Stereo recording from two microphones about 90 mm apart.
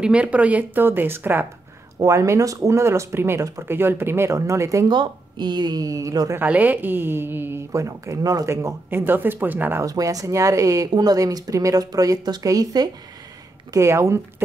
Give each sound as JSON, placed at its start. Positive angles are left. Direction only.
{"t": 0.0, "sound": "a woman's voice", "side_deg": -15}
{"t": 2.0, "sound": "a woman's voice", "side_deg": -35}
{"t": 4.8, "sound": "speech", "side_deg": -55}
{"t": 6.4, "sound": "a woman's voice", "side_deg": -20}
{"t": 9.8, "sound": "speech", "side_deg": -40}
{"t": 13.7, "sound": "speech", "side_deg": -35}